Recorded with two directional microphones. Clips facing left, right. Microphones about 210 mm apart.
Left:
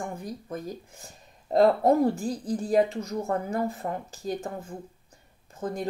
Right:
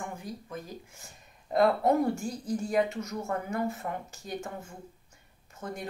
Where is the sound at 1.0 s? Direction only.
35° left (ahead or behind).